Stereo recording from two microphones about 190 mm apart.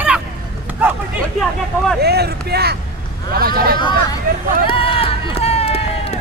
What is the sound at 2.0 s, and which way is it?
A man's voice, 55° right (ahead or behind).